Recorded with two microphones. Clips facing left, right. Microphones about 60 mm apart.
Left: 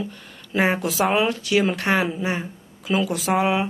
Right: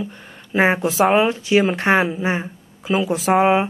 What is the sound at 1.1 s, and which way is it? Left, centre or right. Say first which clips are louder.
Speech: right 4 dB; right.